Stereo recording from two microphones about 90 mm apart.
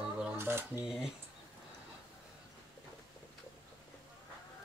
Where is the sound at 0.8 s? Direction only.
5° right (ahead or behind).